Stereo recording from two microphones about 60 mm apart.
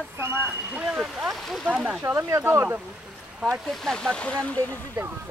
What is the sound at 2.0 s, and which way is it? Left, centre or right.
Speech, right.